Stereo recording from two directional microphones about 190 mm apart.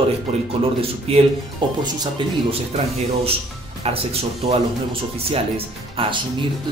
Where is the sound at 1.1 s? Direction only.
30° right (ahead or behind).